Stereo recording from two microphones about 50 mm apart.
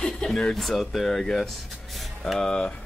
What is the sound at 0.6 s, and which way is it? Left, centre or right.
Speech, centre.